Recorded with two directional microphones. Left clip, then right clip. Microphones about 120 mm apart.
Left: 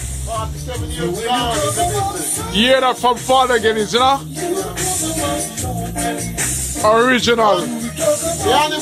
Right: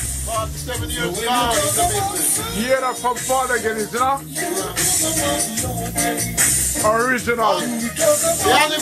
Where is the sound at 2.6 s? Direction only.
35° left (ahead or behind).